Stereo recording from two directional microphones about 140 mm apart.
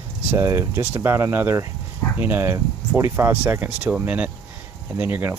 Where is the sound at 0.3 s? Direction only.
15° right (ahead or behind).